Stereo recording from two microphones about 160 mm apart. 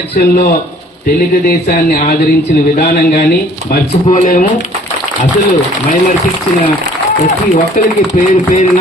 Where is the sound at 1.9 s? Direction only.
70° left (ahead or behind).